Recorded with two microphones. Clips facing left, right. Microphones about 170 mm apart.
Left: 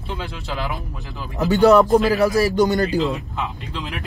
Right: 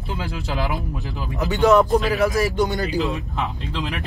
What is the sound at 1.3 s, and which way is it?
Speech, 40° left (ahead or behind).